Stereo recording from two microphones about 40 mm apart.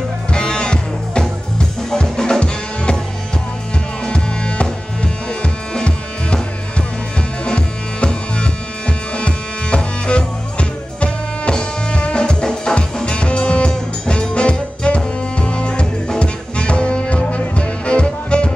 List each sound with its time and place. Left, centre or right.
0.3 s music: left
1.6 s drum kit: centre
2.4 s music: left
4.0 s music: left